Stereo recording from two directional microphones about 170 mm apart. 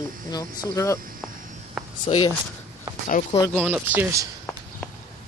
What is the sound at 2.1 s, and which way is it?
Speech, 30° left (ahead or behind).